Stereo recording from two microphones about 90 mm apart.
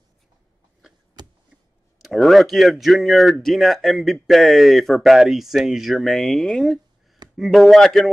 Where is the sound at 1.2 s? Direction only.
50° right (ahead or behind).